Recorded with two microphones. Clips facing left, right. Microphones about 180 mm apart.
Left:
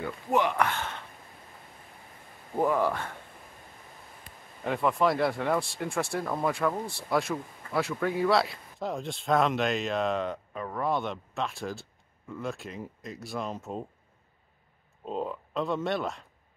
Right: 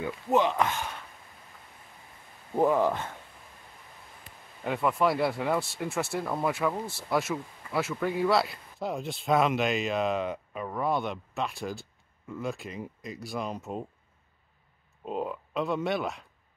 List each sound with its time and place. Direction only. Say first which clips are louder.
0.0 s speech: right 2 dB; 20° right (ahead or behind)
2.6 s speech: right 2 dB; 20° right (ahead or behind)
4.6 s speech: even; centre (ahead or behind)
15.0 s speech: even; 5° right (ahead or behind)